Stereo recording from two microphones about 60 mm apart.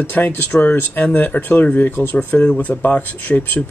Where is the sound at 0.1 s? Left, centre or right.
Left.